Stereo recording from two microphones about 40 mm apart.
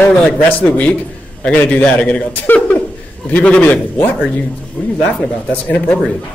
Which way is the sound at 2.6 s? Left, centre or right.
Left.